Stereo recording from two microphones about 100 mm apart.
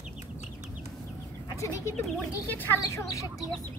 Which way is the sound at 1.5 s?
30° left (ahead or behind).